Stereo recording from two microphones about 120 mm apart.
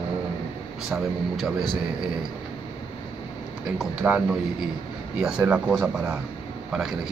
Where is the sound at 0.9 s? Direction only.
Centre (ahead or behind).